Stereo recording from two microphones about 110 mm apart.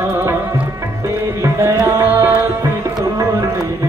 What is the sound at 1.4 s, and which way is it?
Tabla, 25° right (ahead or behind).